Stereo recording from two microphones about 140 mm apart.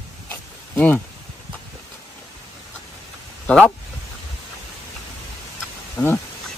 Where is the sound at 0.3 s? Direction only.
10° left (ahead or behind).